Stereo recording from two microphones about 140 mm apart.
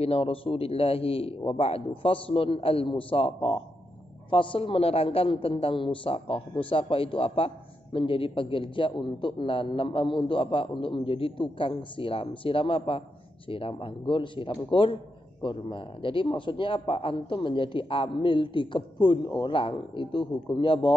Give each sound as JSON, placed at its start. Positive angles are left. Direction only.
{"t": 0.0, "sound": "a man's voice", "side_deg": 45}